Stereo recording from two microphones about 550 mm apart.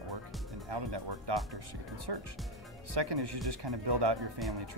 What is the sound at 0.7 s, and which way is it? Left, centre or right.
Speech, right.